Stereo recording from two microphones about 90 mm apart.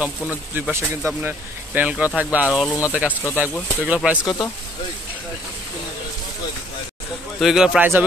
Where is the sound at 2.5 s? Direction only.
5° right (ahead or behind).